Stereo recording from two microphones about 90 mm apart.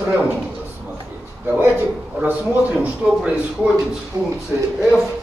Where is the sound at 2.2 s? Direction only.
15° right (ahead or behind).